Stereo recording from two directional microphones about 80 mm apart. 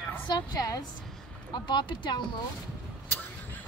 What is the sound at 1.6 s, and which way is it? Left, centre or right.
Speech, left.